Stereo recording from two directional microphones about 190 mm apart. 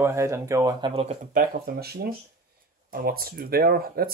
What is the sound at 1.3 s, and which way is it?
Speech, 45° right (ahead or behind).